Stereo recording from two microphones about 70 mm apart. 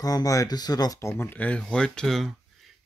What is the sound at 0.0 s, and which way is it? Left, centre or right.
Speech, left.